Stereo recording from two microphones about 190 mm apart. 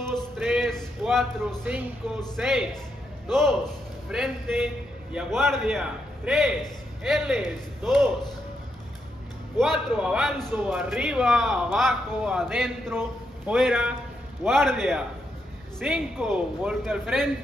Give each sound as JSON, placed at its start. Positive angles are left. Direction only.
{"t": 0.0, "sound": "music", "side_deg": 0}
{"t": 2.3, "sound": "a man's voice", "side_deg": 0}
{"t": 9.6, "sound": "a man's voice", "side_deg": -5}